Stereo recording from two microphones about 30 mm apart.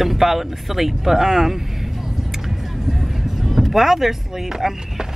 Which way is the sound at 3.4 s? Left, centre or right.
Centre.